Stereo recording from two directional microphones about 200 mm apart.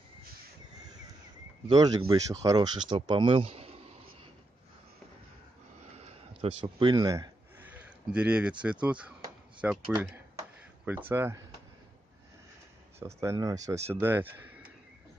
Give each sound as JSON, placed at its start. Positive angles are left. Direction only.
{"t": 1.7, "sound": "speech", "side_deg": -20}
{"t": 6.0, "sound": "a sound", "side_deg": -25}
{"t": 8.8, "sound": "speech", "side_deg": -5}
{"t": 13.0, "sound": "speech", "side_deg": -15}